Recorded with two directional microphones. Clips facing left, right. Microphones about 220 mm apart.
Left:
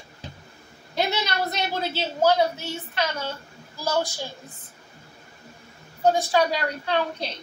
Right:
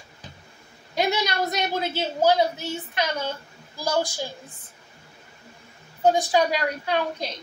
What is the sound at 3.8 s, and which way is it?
Speech, 15° right (ahead or behind).